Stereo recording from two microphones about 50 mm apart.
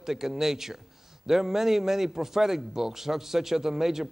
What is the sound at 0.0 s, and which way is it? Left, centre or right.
A man's voice, centre.